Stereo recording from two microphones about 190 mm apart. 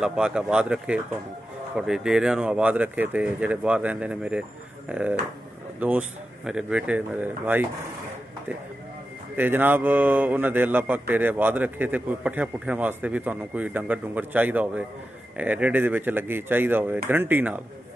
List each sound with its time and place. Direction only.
0.0 s a man's voice: 5° right (ahead or behind)
9.4 s a man's voice: 10° right (ahead or behind)